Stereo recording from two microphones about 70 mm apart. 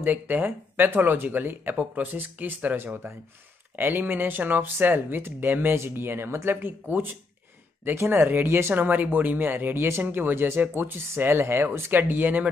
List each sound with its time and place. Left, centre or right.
0.0 s speech: right
8.8 s speech: right